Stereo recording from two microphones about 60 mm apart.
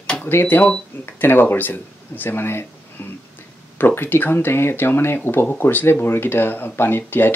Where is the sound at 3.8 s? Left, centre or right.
Left.